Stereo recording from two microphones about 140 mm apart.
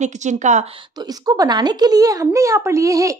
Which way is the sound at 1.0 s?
30° right (ahead or behind).